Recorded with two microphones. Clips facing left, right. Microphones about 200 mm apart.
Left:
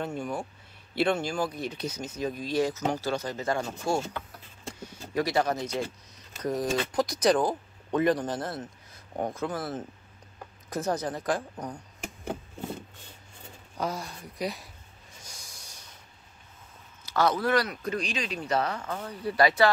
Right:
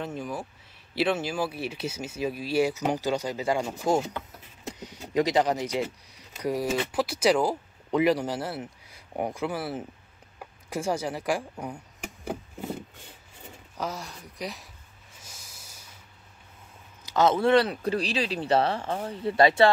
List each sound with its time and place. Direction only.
0.0 s speech: centre (ahead or behind)
13.7 s speech: centre (ahead or behind)
15.2 s snort: 5° right (ahead or behind)
17.0 s speech: 20° right (ahead or behind)